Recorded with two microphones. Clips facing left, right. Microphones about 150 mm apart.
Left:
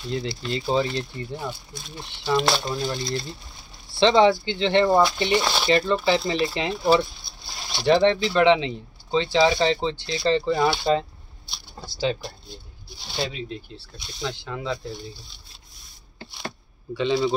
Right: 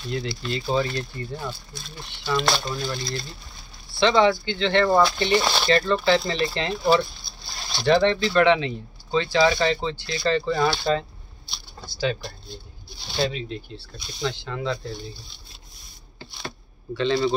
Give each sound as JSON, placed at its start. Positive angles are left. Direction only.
{"t": 0.1, "sound": "speech", "side_deg": 30}
{"t": 2.8, "sound": "speech", "side_deg": 25}
{"t": 5.4, "sound": "speech", "side_deg": 5}
{"t": 5.7, "sound": "speech", "side_deg": 15}
{"t": 11.4, "sound": "a sound", "side_deg": 30}
{"t": 13.1, "sound": "speech", "side_deg": 5}
{"t": 16.9, "sound": "speech", "side_deg": 10}